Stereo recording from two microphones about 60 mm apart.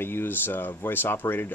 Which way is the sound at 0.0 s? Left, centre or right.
Left.